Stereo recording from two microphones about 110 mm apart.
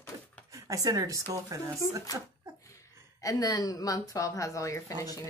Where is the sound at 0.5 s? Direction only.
30° right (ahead or behind).